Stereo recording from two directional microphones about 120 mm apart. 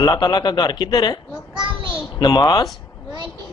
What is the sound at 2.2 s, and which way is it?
Speech, 35° left (ahead or behind).